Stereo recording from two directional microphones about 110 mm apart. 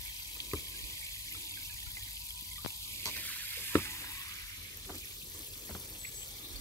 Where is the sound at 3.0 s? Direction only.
15° left (ahead or behind).